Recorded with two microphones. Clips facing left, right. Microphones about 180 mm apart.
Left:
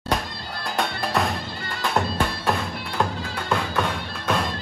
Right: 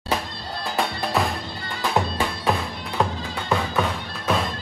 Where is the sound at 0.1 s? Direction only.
Centre (ahead or behind).